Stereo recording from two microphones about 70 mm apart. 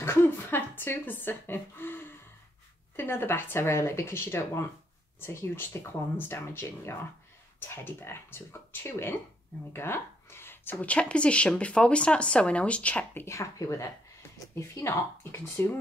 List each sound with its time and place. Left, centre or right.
0.0 s a sound: left
3.0 s speech: left
13.2 s speech: left